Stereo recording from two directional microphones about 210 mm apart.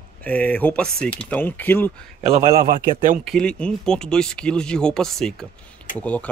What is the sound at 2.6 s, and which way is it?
Speech, 45° right (ahead or behind).